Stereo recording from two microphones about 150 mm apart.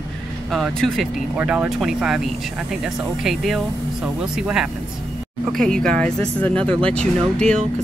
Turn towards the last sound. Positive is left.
turn(degrees=5)  # may be behind; listen again after turning